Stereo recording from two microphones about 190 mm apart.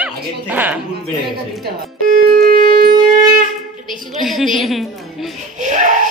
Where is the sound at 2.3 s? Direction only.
55° right (ahead or behind).